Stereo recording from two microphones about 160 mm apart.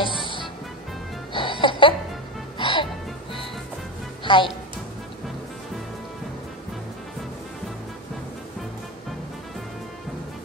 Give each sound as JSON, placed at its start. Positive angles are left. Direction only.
{"t": 0.0, "sound": "music", "side_deg": 30}
{"t": 4.2, "sound": "music", "side_deg": 30}